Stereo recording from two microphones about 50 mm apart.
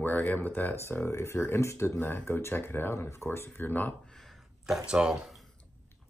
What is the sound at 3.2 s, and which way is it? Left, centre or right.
Speech, left.